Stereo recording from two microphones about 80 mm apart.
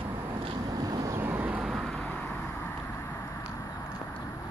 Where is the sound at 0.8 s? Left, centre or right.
Right.